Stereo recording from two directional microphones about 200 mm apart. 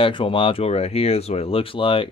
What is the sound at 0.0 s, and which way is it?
Speech, 25° left (ahead or behind).